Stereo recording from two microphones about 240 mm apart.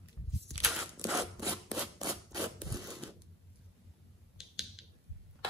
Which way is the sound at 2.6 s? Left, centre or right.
Centre.